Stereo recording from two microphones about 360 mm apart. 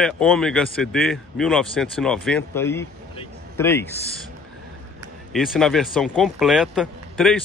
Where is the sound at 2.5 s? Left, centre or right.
Centre.